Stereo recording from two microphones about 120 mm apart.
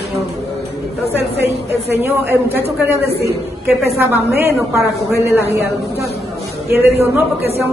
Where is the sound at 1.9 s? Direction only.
20° right (ahead or behind).